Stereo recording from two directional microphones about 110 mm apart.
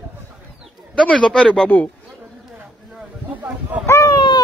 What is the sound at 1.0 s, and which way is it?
Speech, 10° left (ahead or behind).